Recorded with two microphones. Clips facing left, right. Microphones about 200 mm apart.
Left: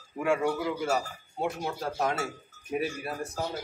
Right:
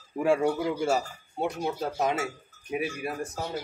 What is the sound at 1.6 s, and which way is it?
Speech, 20° right (ahead or behind).